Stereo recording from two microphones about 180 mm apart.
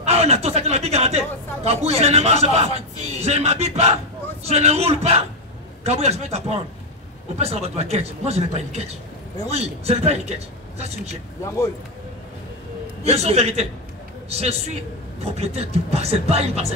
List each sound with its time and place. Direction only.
0.0 s speech: 35° right (ahead or behind)
13.0 s speech: 35° right (ahead or behind)